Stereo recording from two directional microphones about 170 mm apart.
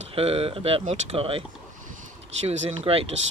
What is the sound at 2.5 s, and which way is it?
Speech, 35° right (ahead or behind).